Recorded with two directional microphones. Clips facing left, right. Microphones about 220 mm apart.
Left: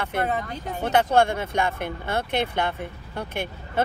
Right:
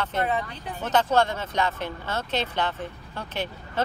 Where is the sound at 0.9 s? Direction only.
10° left (ahead or behind).